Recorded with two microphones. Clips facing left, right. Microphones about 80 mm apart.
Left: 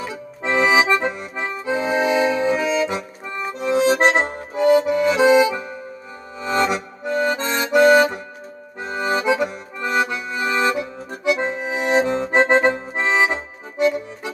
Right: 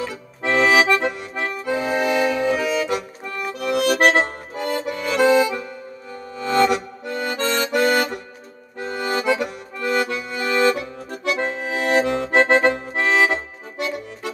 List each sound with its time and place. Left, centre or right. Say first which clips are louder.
0.0 s accordion: right 1 dB; centre
4.1 s accordion: even; centre